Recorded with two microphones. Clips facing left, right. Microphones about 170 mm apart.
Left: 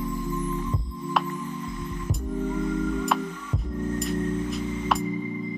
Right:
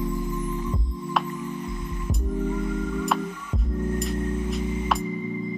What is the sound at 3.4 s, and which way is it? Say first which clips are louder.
Music: right 1 dB; 10° right (ahead or behind).